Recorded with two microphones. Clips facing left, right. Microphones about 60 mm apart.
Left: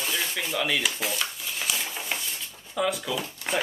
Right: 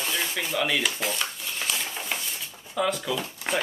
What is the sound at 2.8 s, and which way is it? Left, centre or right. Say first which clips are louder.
Speech: right 1 dB; centre.